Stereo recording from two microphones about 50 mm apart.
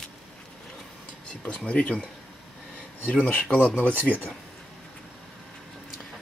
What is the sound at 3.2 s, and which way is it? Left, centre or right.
Speech, left.